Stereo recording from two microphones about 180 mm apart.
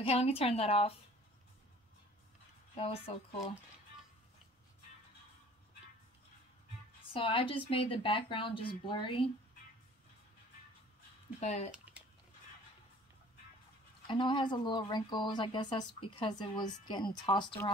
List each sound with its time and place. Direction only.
0.0 s a woman's voice: 35° left (ahead or behind)
2.7 s a woman's voice: 30° left (ahead or behind)
7.1 s speech: 30° left (ahead or behind)
11.3 s a woman's voice: 40° left (ahead or behind)
11.7 s a sound: 5° right (ahead or behind)
14.0 s speech: 25° left (ahead or behind)